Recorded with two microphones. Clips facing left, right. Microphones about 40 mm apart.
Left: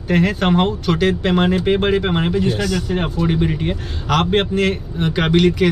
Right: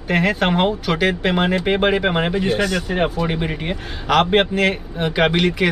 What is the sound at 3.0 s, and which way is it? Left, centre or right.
A man's voice, centre.